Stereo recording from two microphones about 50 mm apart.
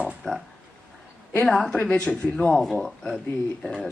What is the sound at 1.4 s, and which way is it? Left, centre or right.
Speech, centre.